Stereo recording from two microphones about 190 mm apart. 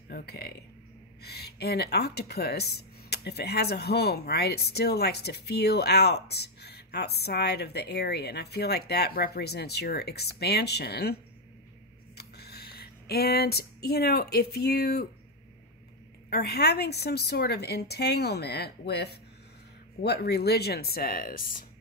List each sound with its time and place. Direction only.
0.1 s speech: 55° left (ahead or behind)
12.2 s speech: 55° left (ahead or behind)
16.3 s speech: 55° left (ahead or behind)